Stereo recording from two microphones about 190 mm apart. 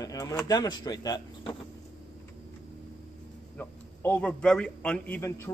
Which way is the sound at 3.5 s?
10° left (ahead or behind).